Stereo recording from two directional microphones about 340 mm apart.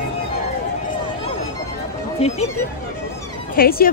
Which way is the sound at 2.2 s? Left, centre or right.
Centre.